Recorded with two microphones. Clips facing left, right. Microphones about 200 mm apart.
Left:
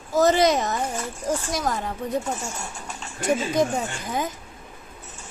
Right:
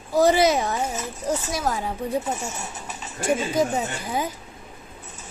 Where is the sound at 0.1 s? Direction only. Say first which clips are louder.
Right 1 dB; 10° right (ahead or behind).